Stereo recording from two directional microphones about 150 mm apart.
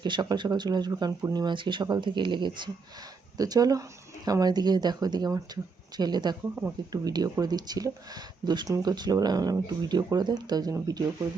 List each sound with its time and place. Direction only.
0.0 s speech: 30° right (ahead or behind)